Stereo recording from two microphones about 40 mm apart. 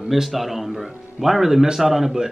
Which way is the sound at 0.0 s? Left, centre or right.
Centre.